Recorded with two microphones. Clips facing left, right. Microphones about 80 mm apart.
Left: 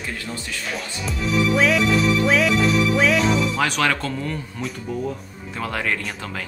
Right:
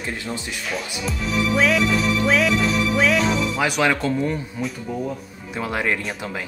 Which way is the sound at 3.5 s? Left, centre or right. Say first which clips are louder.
Right 1 dB; centre.